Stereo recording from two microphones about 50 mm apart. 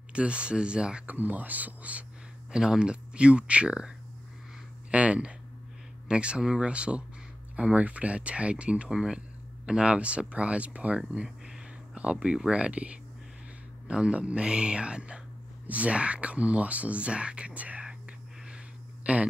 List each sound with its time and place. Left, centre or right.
0.1 s speech: right
1.0 s speech: right
2.5 s speech: centre
4.9 s speech: right
8.9 s speech: centre
9.7 s speech: centre
11.0 s a sound: centre
12.0 s speech: right
19.1 s speech: right